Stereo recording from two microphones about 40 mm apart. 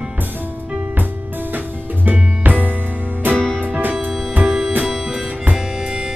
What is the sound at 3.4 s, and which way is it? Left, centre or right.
Music, left.